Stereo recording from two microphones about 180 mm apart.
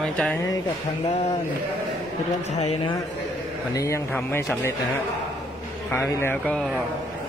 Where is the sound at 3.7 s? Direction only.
15° left (ahead or behind).